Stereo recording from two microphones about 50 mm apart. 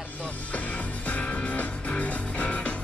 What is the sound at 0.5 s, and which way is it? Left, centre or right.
Music, left.